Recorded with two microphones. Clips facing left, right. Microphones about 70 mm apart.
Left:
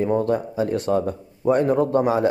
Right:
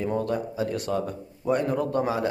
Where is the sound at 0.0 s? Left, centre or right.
Left.